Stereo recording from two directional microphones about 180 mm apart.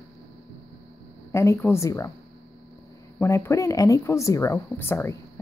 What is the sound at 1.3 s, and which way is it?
Speech, 15° left (ahead or behind).